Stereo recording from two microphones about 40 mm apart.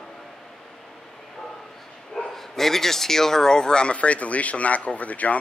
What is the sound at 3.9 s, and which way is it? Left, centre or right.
Speech, left.